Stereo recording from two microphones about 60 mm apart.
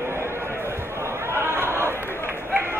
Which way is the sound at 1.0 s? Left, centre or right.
Right.